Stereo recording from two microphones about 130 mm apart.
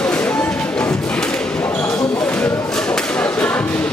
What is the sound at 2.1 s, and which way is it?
Whip, 10° left (ahead or behind).